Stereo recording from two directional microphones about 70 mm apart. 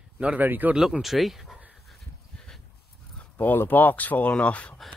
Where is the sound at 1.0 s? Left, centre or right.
Centre.